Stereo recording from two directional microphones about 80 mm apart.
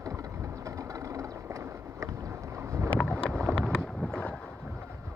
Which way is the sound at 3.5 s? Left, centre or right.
Centre.